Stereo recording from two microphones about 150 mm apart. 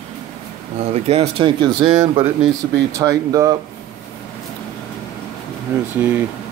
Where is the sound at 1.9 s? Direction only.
50° right (ahead or behind).